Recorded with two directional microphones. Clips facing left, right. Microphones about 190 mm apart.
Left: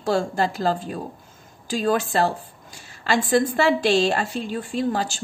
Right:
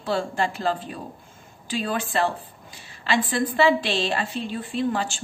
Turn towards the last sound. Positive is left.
turn(degrees=40)  # may be behind; listen again after turning